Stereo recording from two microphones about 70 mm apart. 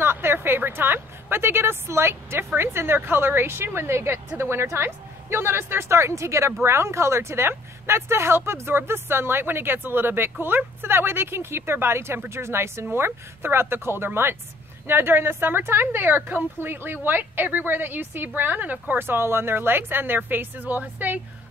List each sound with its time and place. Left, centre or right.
0.0 s a woman's voice: right